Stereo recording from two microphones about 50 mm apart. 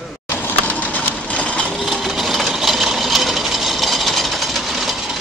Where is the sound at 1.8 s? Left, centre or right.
Centre.